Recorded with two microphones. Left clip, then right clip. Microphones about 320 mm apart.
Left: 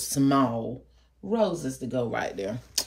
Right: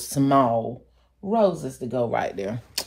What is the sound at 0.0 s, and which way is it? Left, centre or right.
Speech, centre.